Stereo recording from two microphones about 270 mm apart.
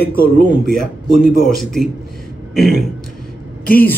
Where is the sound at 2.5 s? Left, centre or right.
Centre.